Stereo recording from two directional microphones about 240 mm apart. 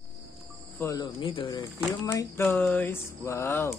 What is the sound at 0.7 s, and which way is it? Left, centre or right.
Speech, centre.